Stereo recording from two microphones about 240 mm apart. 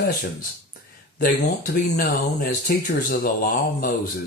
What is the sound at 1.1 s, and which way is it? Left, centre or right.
Speech, left.